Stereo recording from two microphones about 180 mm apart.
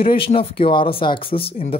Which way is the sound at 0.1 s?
30° left (ahead or behind).